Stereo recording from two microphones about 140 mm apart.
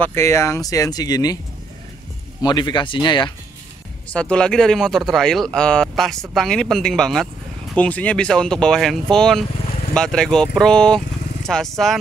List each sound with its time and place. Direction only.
0.0 s speech: 20° left (ahead or behind)
2.4 s speech: 30° left (ahead or behind)
4.1 s speech: 5° left (ahead or behind)